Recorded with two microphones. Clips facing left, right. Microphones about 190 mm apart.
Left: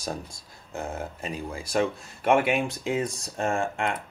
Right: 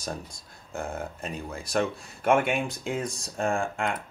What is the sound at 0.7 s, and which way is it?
Speech, 5° left (ahead or behind).